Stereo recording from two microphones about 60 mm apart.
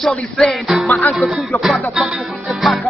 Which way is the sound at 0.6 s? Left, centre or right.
Centre.